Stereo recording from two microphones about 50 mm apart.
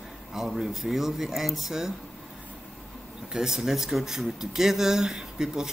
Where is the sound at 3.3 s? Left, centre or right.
Centre.